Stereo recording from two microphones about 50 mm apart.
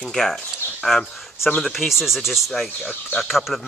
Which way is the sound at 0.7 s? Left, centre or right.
Centre.